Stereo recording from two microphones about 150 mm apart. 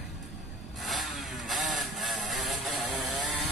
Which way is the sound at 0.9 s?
Centre (ahead or behind).